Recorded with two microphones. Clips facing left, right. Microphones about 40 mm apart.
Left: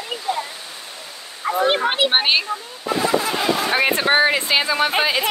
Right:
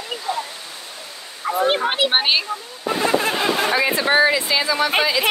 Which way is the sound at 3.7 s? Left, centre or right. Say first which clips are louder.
Left 3 dB; left.